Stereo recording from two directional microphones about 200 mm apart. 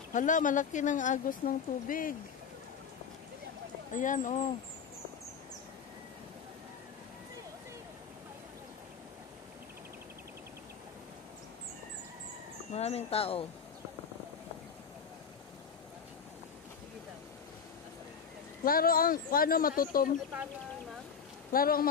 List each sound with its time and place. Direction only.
0.1 s speech: 40° left (ahead or behind)
3.9 s speech: 40° left (ahead or behind)
12.7 s speech: 30° left (ahead or behind)
18.6 s speech: 45° left (ahead or behind)
21.5 s speech: 45° left (ahead or behind)